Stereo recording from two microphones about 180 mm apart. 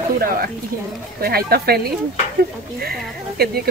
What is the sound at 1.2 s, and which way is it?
Speech, 60° right (ahead or behind).